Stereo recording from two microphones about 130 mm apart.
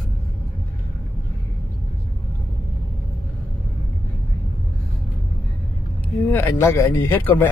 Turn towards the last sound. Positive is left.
turn(degrees=15)  # may be behind; listen again after turning